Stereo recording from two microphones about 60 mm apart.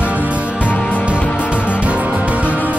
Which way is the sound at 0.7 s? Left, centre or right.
Left.